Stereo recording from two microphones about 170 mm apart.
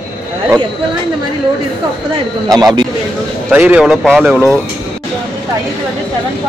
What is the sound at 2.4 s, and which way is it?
Speech, 25° right (ahead or behind).